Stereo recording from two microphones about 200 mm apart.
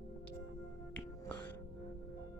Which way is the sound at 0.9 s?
10° left (ahead or behind).